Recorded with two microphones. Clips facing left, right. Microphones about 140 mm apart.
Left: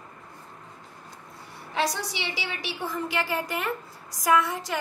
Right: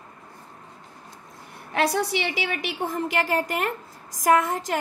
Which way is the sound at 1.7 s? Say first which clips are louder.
Right 5 dB; 60° right (ahead or behind).